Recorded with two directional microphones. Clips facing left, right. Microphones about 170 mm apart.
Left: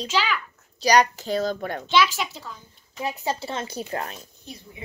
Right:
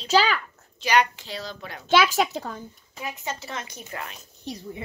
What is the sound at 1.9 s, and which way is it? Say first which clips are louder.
Speech: right 3 dB; 50° right (ahead or behind).